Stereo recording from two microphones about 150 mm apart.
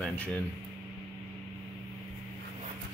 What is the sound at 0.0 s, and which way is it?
Speech, 10° left (ahead or behind).